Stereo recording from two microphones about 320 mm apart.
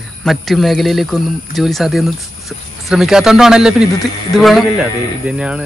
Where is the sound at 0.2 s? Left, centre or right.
Centre.